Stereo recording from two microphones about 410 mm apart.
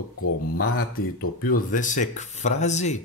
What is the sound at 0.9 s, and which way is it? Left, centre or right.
Speech, left.